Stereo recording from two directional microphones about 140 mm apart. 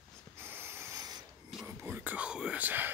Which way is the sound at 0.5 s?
15° right (ahead or behind).